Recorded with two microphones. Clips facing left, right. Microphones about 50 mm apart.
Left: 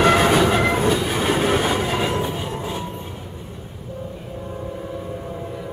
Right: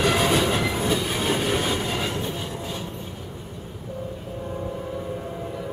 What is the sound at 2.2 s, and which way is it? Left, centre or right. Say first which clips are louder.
Train: left 4 dB; left.